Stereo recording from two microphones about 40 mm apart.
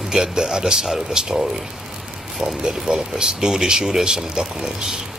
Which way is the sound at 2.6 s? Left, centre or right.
Centre.